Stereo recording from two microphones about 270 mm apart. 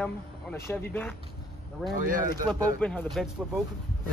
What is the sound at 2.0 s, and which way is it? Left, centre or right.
Speech, right.